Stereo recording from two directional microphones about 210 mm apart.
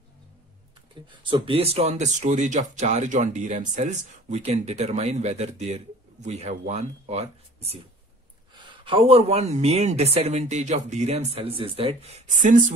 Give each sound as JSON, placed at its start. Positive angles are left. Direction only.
{"t": 1.3, "sound": "speech", "side_deg": -25}
{"t": 8.8, "sound": "speech", "side_deg": -25}